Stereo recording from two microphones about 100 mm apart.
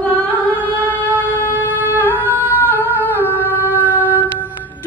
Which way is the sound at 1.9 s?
20° right (ahead or behind).